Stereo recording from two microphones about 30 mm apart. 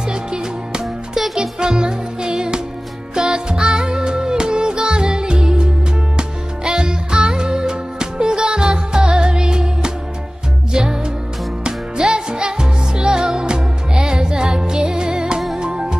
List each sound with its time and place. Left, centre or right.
0.1 s music: right
1.1 s music for children: centre
1.6 s music: right